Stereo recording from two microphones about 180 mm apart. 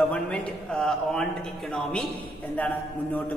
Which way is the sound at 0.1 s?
5° left (ahead or behind).